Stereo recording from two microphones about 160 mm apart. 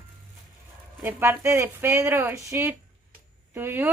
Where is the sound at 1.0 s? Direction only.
15° right (ahead or behind).